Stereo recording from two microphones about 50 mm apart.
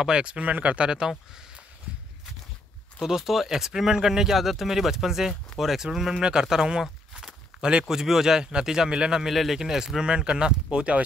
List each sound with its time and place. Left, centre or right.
0.0 s speech: centre
1.9 s walk: right
3.0 s speech: centre
9.3 s speech: centre
9.6 s speech: centre